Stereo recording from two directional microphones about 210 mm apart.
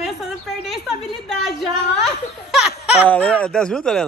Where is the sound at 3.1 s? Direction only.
5° left (ahead or behind).